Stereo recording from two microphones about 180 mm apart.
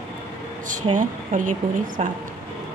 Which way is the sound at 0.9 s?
45° right (ahead or behind).